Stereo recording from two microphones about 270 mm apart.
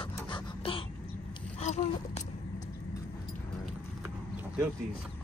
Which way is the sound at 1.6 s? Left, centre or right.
Left.